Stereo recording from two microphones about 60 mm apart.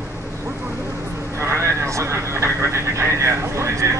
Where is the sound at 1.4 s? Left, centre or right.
Right.